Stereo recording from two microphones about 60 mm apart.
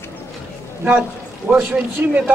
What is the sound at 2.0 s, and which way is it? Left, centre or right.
Speech, right.